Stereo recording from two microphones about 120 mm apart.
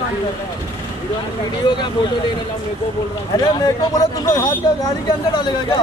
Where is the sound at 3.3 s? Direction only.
35° left (ahead or behind).